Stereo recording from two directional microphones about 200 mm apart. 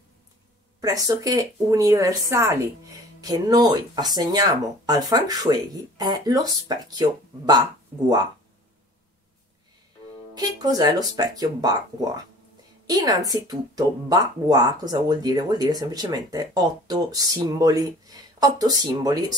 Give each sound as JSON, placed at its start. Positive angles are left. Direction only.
{"t": 0.7, "sound": "speech", "side_deg": -15}
{"t": 10.3, "sound": "speech", "side_deg": -20}